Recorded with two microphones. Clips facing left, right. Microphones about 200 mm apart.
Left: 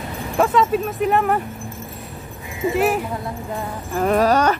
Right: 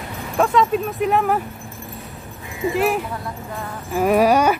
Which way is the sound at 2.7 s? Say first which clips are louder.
Left 1 dB; centre (ahead or behind).